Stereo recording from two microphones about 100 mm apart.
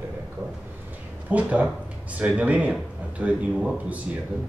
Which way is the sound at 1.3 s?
15° right (ahead or behind).